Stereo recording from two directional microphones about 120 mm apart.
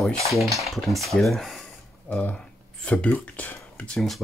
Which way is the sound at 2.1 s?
10° left (ahead or behind).